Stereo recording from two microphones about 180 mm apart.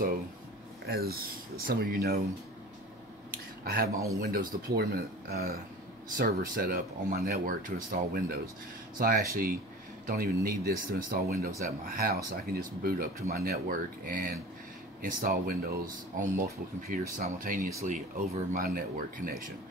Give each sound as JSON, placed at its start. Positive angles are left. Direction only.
{"t": 0.8, "sound": "speech", "side_deg": -60}
{"t": 3.6, "sound": "speech", "side_deg": -55}